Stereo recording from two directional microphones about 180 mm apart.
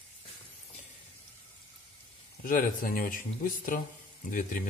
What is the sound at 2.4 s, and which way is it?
Speech, 50° left (ahead or behind).